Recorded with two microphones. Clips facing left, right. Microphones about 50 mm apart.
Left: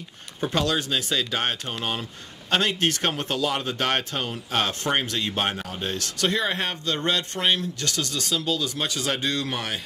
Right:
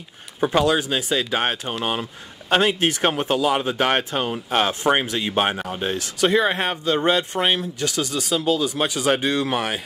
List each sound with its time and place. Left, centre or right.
0.4 s speech: centre